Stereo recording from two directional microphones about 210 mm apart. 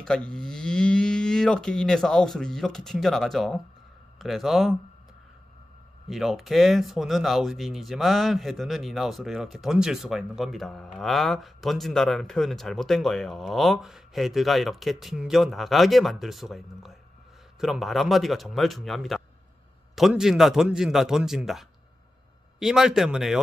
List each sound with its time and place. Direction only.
0.0 s speech: 5° left (ahead or behind)
6.0 s speech: centre (ahead or behind)